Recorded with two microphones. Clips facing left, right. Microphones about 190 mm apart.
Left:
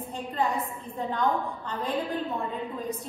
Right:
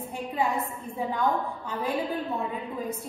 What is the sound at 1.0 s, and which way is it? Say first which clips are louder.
Speech: right 1 dB; 10° right (ahead or behind).